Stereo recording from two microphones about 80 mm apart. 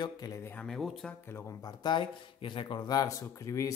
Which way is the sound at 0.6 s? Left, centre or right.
Centre.